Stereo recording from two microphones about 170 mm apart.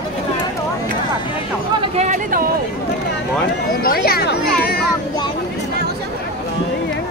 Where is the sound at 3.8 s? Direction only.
60° left (ahead or behind).